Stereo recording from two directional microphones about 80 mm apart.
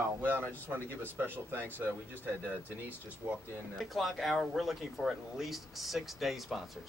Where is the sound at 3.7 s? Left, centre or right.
Centre.